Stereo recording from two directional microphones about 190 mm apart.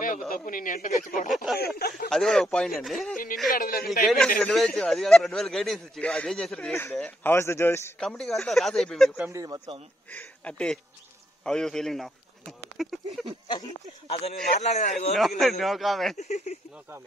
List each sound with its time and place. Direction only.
0.3 s speech: 45° left (ahead or behind)
1.3 s speech: centre (ahead or behind)
1.8 s speech: 55° left (ahead or behind)
2.0 s speech: centre (ahead or behind)
3.5 s speech: 50° left (ahead or behind)
4.4 s speech: 5° left (ahead or behind)
8.0 s speech: centre (ahead or behind)
9.1 s speech: 10° right (ahead or behind)
10.0 s speech: 5° left (ahead or behind)
13.5 s speech: 25° left (ahead or behind)
15.1 s speech: centre (ahead or behind)
16.2 s speech: 35° left (ahead or behind)